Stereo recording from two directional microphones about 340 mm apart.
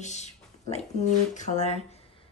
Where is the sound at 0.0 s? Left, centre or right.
Centre.